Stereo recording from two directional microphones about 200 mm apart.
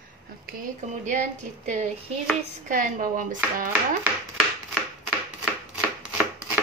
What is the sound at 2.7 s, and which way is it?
A woman's voice, 40° right (ahead or behind).